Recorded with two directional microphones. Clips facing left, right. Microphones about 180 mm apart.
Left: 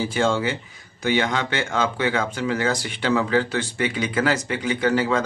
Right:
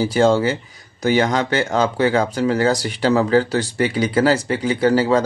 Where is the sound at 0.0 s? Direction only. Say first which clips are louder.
Right 6 dB; 40° right (ahead or behind).